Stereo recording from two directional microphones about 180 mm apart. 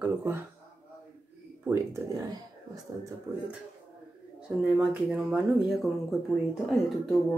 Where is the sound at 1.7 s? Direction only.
20° right (ahead or behind).